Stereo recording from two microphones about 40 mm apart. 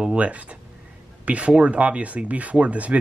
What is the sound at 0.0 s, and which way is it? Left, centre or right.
A man's voice, right.